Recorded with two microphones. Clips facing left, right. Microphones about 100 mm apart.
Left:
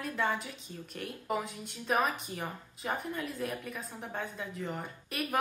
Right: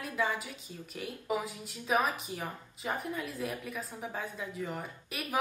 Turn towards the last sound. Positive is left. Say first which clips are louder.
# left 3 dB
turn(degrees=0)  # may be behind; listen again after turning